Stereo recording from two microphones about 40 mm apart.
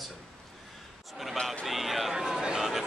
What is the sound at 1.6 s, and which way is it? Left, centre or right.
Speech, centre.